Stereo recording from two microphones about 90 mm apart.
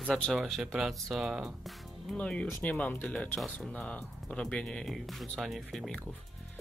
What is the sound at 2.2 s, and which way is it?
Speech, 15° left (ahead or behind).